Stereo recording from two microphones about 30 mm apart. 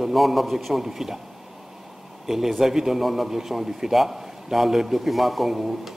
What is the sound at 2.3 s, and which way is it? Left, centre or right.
A man's voice, centre.